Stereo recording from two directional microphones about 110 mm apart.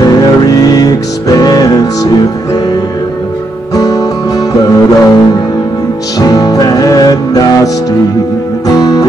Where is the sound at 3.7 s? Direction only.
30° left (ahead or behind).